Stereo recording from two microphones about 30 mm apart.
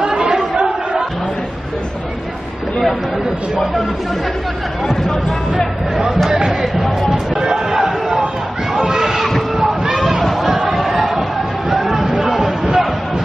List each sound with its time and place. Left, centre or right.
0.0 s chatter: right
6.6 s speech: centre
7.4 s a sound: centre